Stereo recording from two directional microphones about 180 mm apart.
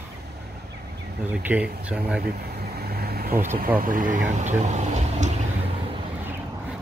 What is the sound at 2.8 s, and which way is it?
Vehicle, 60° right (ahead or behind).